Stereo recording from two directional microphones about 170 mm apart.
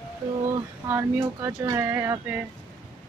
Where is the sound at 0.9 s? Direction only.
15° right (ahead or behind).